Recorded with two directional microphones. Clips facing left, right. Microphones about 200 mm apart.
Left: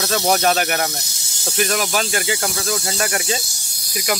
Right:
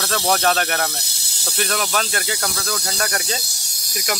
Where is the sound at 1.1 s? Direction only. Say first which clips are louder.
Left 4 dB; 35° right (ahead or behind).